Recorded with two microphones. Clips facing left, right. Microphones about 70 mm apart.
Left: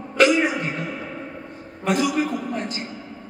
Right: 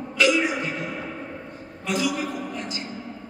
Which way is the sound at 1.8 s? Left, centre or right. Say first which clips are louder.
Left 4 dB; left.